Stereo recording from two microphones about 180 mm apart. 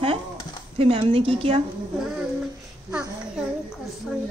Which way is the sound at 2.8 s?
5° right (ahead or behind).